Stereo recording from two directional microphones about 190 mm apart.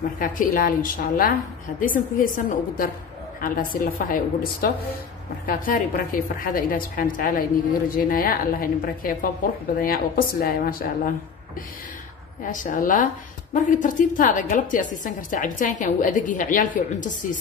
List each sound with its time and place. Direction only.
0.2 s a woman's voice: 45° left (ahead or behind)
12.4 s a woman's voice: 45° left (ahead or behind)